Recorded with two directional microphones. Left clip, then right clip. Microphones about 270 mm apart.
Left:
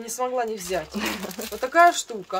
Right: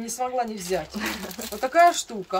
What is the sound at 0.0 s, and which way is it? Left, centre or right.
Speech, centre.